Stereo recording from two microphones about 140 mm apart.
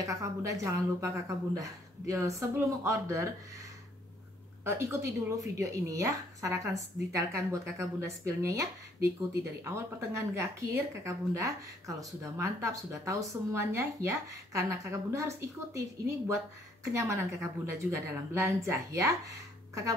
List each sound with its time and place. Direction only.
0.0 s speech: 20° right (ahead or behind)
4.6 s speech: 20° right (ahead or behind)
16.9 s speech: 20° right (ahead or behind)